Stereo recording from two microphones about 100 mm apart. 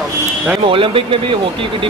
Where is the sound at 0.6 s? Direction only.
65° right (ahead or behind).